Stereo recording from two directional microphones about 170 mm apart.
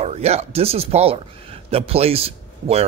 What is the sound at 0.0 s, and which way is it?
Speech, 40° right (ahead or behind).